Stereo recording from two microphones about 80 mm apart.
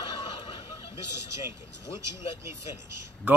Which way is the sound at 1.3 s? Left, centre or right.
Right.